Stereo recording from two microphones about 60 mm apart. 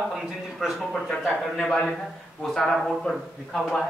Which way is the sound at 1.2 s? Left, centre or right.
Centre.